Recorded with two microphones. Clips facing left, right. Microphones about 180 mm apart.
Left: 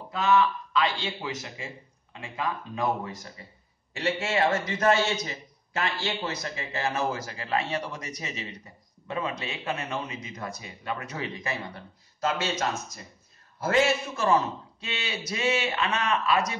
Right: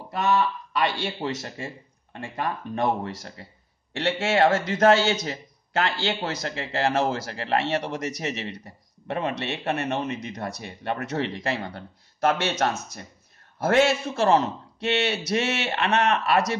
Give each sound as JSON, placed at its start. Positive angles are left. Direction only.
{"t": 0.7, "sound": "a man's voice", "side_deg": -65}